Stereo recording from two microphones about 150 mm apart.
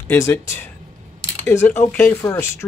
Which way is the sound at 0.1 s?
15° left (ahead or behind).